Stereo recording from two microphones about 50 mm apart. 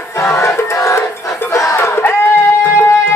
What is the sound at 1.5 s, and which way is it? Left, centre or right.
Battle cry, left.